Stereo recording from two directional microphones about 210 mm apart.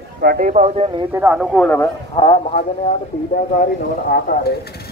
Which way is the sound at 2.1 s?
20° left (ahead or behind).